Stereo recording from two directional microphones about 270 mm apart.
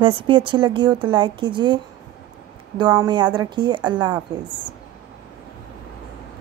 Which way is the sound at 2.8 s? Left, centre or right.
Centre.